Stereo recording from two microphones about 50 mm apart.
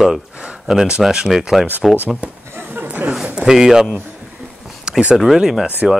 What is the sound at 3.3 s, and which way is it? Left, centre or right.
Speech, centre.